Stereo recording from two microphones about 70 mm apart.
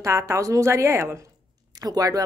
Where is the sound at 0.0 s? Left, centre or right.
Right.